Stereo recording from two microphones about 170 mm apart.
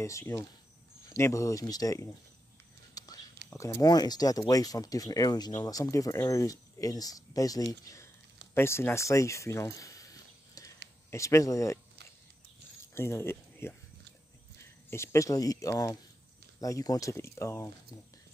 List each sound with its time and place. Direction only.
0.0 s speech: 15° left (ahead or behind)
2.9 s whispering: 20° left (ahead or behind)
3.4 s speech: 15° left (ahead or behind)
12.9 s speech: 15° left (ahead or behind)
14.9 s speech: 15° left (ahead or behind)